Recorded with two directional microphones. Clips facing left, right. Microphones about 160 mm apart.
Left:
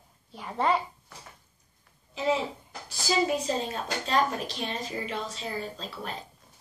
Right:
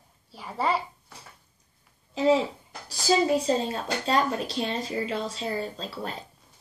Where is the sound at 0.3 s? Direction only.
Centre (ahead or behind).